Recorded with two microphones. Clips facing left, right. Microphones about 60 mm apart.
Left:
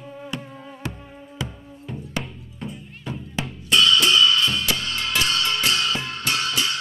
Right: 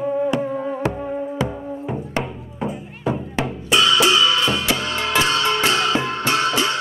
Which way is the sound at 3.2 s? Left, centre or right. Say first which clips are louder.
Right 7 dB; right.